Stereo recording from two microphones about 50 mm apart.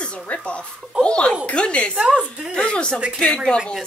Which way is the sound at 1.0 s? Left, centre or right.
Left.